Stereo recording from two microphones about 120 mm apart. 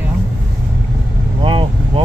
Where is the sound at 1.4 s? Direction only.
45° right (ahead or behind).